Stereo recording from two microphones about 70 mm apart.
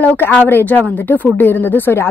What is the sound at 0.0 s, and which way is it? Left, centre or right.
A woman's voice, left.